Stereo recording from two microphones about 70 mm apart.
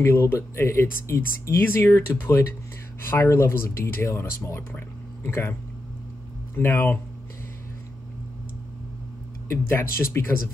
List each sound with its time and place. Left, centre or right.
0.0 s speech: left
9.5 s speech: left